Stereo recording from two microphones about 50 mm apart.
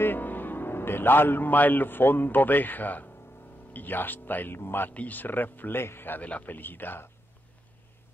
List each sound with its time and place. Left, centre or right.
0.0 s a man's voice: left
4.9 s speech: left
6.2 s speech: left
6.5 s speech: left